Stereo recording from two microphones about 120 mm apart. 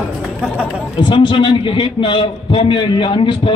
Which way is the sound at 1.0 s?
40° left (ahead or behind).